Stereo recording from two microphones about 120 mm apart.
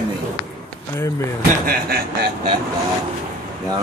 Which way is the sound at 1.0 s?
25° left (ahead or behind).